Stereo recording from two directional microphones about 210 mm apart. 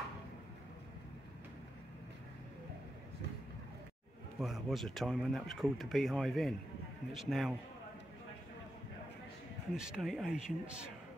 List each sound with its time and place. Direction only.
4.4 s speech: centre (ahead or behind)
9.8 s speech: 5° right (ahead or behind)